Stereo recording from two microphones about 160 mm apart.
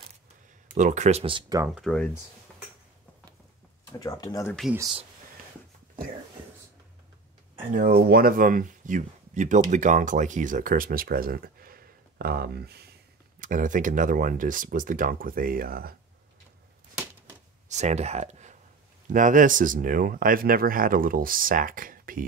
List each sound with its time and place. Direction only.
0.7 s speech: 50° right (ahead or behind)
1.8 s speech: 5° left (ahead or behind)
4.0 s speech: 25° left (ahead or behind)
7.7 s speech: 65° right (ahead or behind); by 12.9 s 85° right
13.4 s speech: 55° right (ahead or behind)
17.6 s speech: 45° right (ahead or behind); by 22.2 s 60° right (ahead or behind)